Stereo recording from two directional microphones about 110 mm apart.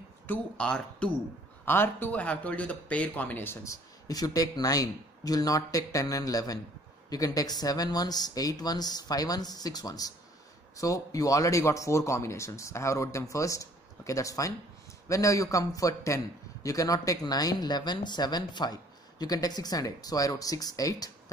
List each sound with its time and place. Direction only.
0.3 s speech: 10° left (ahead or behind)
1.7 s speech: 20° left (ahead or behind)